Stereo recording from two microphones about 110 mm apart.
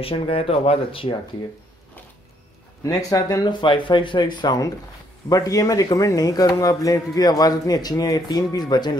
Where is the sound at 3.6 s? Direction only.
50° left (ahead or behind).